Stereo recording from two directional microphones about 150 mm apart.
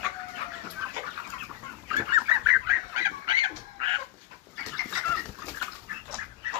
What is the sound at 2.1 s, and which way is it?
Goose, 20° right (ahead or behind).